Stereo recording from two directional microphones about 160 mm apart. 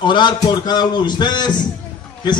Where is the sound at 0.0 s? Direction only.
30° left (ahead or behind).